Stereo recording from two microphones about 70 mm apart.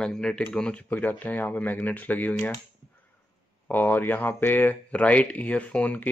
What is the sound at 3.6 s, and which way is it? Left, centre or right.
Speech, left.